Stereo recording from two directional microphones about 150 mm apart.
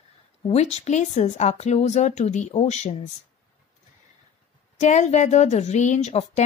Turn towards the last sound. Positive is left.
turn(degrees=45)  # may be behind; listen again after turning